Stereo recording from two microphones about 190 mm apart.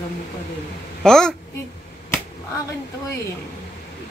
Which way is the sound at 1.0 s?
5° left (ahead or behind).